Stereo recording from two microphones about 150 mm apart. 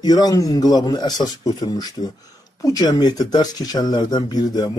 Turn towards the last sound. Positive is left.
turn(degrees=25)  # may be behind; listen again after turning